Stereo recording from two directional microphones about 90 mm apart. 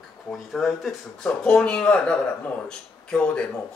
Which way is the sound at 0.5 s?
Centre (ahead or behind).